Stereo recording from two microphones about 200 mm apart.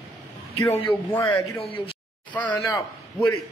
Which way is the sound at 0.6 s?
10° left (ahead or behind).